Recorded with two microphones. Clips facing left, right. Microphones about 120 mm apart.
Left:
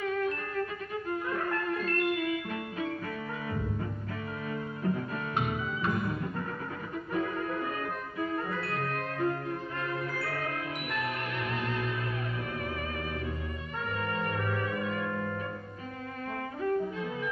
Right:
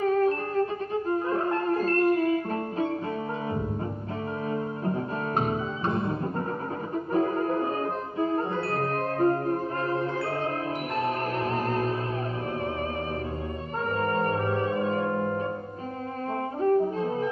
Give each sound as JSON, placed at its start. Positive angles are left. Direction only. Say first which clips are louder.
{"t": 0.0, "sound": "music", "louder": "right 8 dB", "side_deg": -35}
{"t": 4.5, "sound": "music", "louder": "right 2 dB", "side_deg": -35}
{"t": 11.5, "sound": "music", "louder": "right 5 dB", "side_deg": -40}
{"t": 14.0, "sound": "music", "louder": "right 7 dB", "side_deg": -40}
{"t": 16.6, "sound": "music", "louder": "right 7 dB", "side_deg": -35}